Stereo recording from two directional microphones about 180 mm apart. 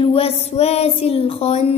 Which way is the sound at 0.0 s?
30° left (ahead or behind).